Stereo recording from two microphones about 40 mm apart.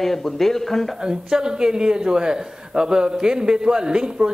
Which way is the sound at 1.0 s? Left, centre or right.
Centre.